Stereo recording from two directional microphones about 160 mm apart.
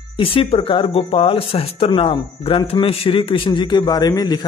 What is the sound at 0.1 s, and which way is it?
A man's voice, 35° left (ahead or behind).